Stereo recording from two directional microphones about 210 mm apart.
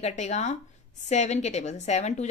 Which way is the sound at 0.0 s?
35° left (ahead or behind).